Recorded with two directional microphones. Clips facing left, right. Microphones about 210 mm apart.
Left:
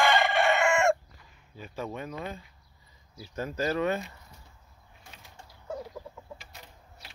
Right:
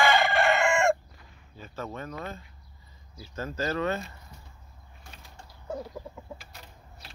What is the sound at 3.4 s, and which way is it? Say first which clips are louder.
Speech: left 1 dB; 15° left (ahead or behind).